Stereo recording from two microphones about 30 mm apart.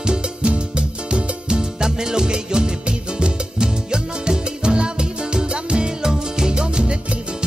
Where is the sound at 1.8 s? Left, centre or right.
Right.